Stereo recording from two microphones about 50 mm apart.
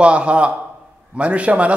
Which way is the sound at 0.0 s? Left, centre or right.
Right.